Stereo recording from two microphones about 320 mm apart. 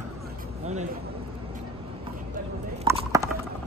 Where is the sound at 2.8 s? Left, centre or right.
Centre.